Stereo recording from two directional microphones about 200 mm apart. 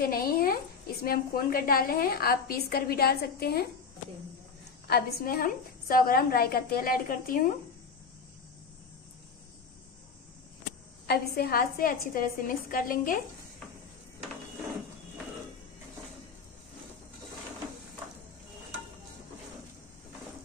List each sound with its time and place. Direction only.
0.0 s a sound: 45° left (ahead or behind)
1.0 s a woman's voice: 45° left (ahead or behind)
4.8 s a woman's voice: 50° left (ahead or behind)
11.1 s a woman's voice: 50° left (ahead or behind)